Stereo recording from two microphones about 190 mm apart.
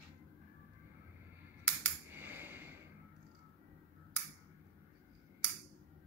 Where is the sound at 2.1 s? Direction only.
10° right (ahead or behind).